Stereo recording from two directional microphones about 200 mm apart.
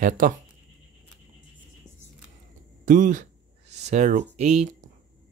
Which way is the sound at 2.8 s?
40° right (ahead or behind).